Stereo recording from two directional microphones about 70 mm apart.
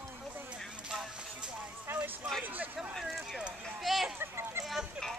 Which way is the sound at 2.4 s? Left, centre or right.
Right.